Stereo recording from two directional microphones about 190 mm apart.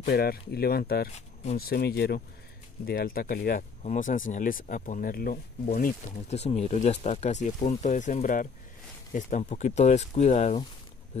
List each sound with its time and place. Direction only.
0.0 s speech: 55° left (ahead or behind)
1.1 s speech: 35° left (ahead or behind)
1.7 s speech: 55° left (ahead or behind); by 10.6 s 35° left (ahead or behind)